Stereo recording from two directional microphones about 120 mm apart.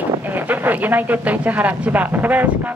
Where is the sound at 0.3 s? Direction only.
15° right (ahead or behind).